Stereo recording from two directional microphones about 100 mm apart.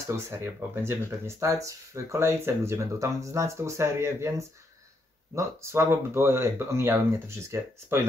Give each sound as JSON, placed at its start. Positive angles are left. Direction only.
{"t": 0.0, "sound": "speech", "side_deg": -30}